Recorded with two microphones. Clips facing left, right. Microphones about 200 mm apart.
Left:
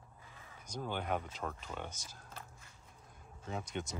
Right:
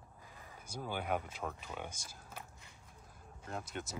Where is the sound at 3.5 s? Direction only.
5° right (ahead or behind).